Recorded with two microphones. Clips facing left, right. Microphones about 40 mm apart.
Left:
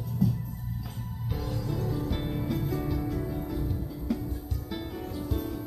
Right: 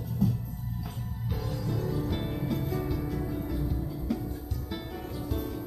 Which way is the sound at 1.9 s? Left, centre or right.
Centre.